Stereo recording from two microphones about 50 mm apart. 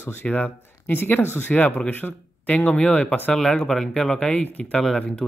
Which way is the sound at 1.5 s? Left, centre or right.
Left.